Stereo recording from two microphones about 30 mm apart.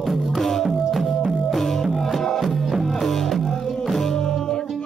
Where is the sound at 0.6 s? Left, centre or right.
Centre.